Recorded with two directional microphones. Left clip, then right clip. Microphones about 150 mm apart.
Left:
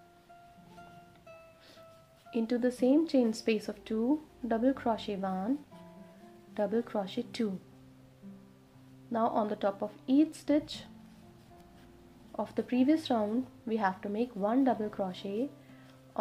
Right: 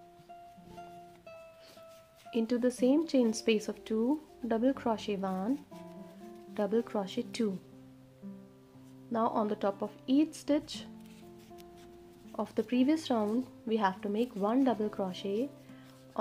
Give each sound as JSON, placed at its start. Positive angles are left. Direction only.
{"t": 2.3, "sound": "a woman's voice", "side_deg": -35}
{"t": 6.5, "sound": "a woman's voice", "side_deg": -35}
{"t": 9.1, "sound": "a woman's voice", "side_deg": -35}
{"t": 12.4, "sound": "a woman's voice", "side_deg": -35}